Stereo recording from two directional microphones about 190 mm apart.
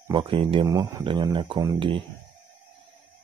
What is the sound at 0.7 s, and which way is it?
Speech, 15° right (ahead or behind).